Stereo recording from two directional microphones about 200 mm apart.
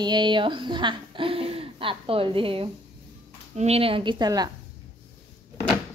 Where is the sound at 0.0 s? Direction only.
25° right (ahead or behind).